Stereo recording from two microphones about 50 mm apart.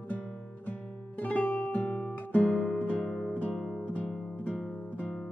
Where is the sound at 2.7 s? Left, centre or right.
Left.